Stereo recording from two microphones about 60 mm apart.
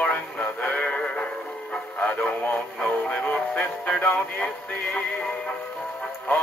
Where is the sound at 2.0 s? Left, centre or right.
Left.